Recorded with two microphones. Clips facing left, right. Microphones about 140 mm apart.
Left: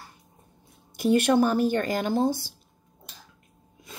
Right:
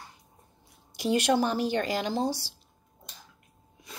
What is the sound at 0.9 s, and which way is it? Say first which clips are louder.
Speech: left 4 dB; 55° left (ahead or behind).